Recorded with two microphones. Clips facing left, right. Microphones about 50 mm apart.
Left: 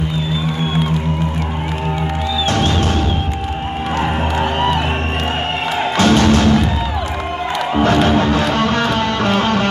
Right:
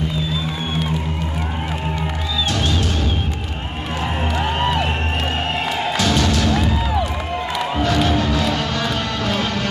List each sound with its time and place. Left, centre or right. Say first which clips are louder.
4.6 s music: left 2 dB; centre
5.9 s music: left 8 dB; left
7.8 s music: left 6 dB; left